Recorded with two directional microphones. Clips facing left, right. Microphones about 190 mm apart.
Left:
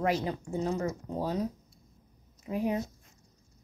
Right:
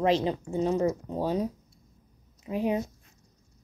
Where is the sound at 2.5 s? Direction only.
20° right (ahead or behind).